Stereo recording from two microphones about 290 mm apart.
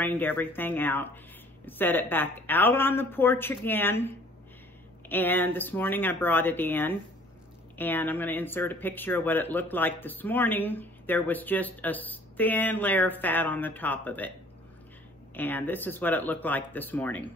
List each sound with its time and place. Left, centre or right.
0.0 s speech: centre
15.3 s speech: centre